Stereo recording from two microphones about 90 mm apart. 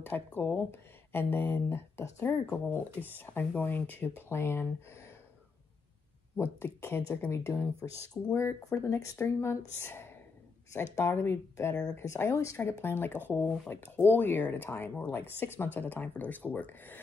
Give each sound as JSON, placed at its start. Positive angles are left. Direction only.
{"t": 0.0, "sound": "speech", "side_deg": 20}
{"t": 2.5, "sound": "speech", "side_deg": 20}
{"t": 6.3, "sound": "speech", "side_deg": 25}